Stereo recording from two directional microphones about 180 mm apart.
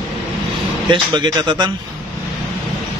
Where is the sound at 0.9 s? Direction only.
25° right (ahead or behind).